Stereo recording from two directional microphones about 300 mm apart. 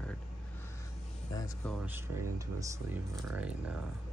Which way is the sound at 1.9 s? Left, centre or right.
Centre.